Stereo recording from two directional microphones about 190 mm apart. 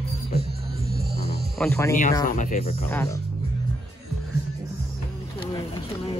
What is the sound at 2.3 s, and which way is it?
Speech, 40° left (ahead or behind).